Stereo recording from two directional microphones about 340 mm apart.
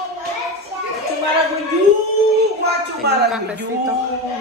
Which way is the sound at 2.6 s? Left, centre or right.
Right.